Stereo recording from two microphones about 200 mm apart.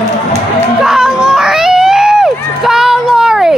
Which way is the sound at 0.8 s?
Centre (ahead or behind).